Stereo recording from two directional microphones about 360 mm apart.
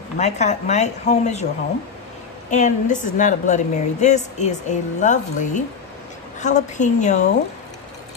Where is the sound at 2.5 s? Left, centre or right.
Left.